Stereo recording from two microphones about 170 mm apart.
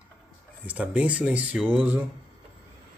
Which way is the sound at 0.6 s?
10° right (ahead or behind).